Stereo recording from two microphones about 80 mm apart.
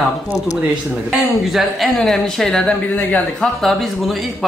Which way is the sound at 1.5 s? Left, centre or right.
Centre.